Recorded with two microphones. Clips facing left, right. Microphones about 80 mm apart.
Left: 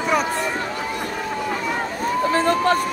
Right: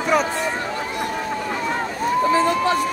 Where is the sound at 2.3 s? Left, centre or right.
Left.